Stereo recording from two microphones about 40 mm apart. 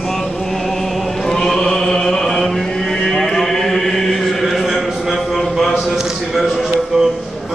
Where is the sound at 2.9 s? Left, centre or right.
Centre.